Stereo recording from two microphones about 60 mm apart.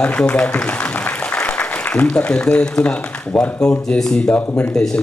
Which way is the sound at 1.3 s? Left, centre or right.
Centre.